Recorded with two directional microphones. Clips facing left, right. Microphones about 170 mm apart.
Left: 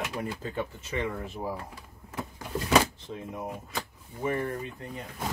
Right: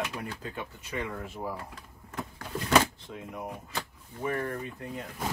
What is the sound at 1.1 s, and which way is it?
Power windows, 15° left (ahead or behind).